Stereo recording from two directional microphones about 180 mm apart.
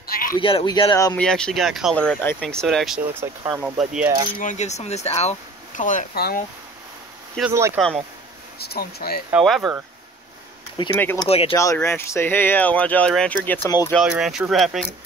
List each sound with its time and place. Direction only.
0.0 s a sound: 55° left (ahead or behind)
0.4 s speech: 30° left (ahead or behind)
1.1 s speech: 5° left (ahead or behind)
3.2 s speech: 15° right (ahead or behind)
4.4 s speech: 40° left (ahead or behind)
7.5 s speech: 15° right (ahead or behind)
8.5 s speech: 60° left (ahead or behind)
9.3 s speech: centre (ahead or behind)
10.8 s speech: 25° left (ahead or behind)
11.5 s speech: 15° left (ahead or behind)
13.7 s speech: 20° left (ahead or behind)
13.9 s speech: 5° right (ahead or behind)